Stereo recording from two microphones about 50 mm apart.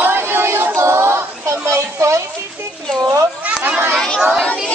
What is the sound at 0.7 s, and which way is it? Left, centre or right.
Child singing, right.